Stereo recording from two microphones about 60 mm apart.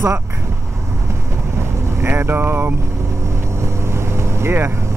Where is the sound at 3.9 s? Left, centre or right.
Right.